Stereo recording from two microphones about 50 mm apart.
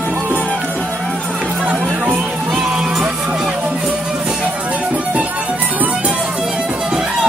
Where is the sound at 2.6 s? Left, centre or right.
Centre.